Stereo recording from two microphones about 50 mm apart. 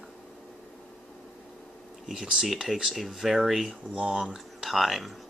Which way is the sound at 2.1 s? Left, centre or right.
Centre.